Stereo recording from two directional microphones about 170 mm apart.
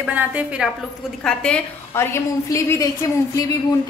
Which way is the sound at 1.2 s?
5° left (ahead or behind).